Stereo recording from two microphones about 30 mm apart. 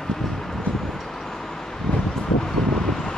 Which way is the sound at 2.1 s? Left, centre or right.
Centre.